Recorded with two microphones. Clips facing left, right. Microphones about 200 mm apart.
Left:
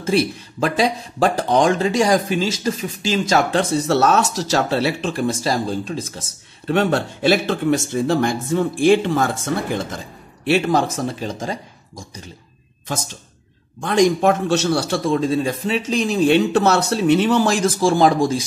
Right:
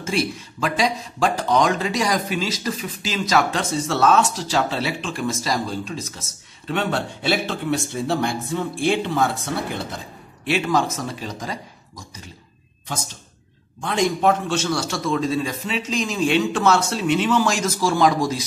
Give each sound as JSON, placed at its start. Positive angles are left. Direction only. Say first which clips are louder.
{"t": 0.0, "sound": "speech", "louder": "left 5 dB", "side_deg": 35}
{"t": 6.7, "sound": "speech", "louder": "left 6 dB", "side_deg": 45}
{"t": 13.8, "sound": "speech", "louder": "left 4 dB", "side_deg": 45}